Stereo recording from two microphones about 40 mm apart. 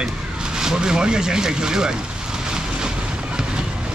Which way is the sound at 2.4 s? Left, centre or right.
Centre.